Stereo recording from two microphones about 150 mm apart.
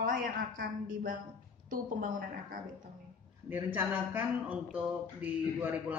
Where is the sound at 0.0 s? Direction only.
70° right (ahead or behind).